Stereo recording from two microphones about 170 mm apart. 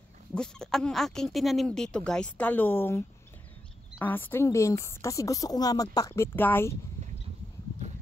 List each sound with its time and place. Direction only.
0.3 s speech: 5° left (ahead or behind)
4.0 s a woman's voice: 10° left (ahead or behind)